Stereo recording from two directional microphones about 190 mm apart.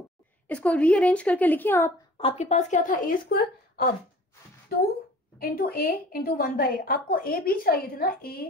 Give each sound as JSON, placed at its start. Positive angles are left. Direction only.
{"t": 0.5, "sound": "a woman's voice", "side_deg": 5}
{"t": 2.1, "sound": "a woman's voice", "side_deg": 30}
{"t": 5.4, "sound": "a woman's voice", "side_deg": 50}